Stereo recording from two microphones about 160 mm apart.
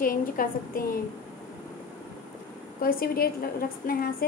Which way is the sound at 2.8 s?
65° left (ahead or behind).